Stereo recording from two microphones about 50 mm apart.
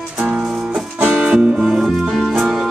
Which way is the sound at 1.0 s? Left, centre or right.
Centre.